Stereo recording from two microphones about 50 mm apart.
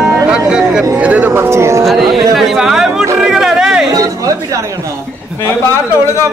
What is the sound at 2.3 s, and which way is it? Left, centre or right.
Chatter, centre.